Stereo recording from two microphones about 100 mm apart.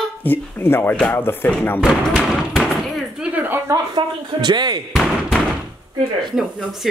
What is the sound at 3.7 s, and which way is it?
Speech, 45° right (ahead or behind).